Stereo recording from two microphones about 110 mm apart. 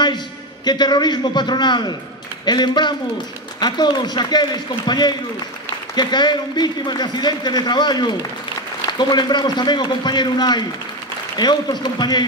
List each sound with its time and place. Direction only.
0.7 s a man's voice: 40° left (ahead or behind)